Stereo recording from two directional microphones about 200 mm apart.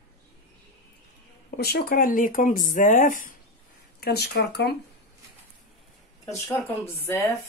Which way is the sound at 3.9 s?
55° left (ahead or behind).